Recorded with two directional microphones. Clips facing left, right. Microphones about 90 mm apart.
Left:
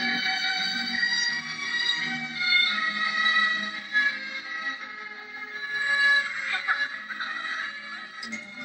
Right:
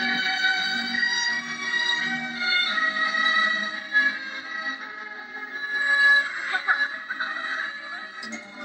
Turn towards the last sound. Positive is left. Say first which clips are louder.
# right 3 dB
turn(degrees=-25)  # may be behind; listen again after turning